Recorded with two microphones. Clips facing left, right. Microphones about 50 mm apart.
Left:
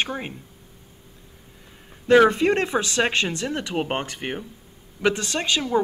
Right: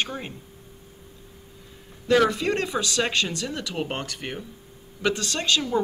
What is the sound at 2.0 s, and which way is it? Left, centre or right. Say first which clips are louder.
Speech: left 5 dB; left.